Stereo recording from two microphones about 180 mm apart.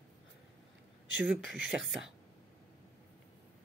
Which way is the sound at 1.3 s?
5° right (ahead or behind).